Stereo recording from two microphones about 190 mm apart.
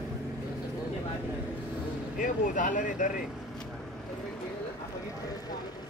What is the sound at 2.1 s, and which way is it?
Speech, 45° left (ahead or behind).